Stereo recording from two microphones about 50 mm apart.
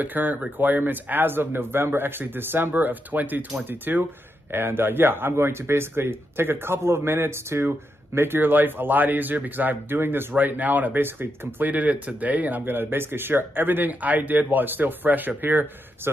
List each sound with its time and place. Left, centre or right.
0.0 s a man's voice: right
10.3 s a man's voice: right
12.6 s a man's voice: right